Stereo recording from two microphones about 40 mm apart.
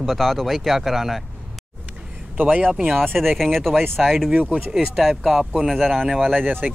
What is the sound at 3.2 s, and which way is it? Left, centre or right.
Speech, centre.